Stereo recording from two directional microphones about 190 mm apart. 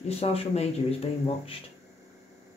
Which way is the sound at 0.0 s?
30° left (ahead or behind).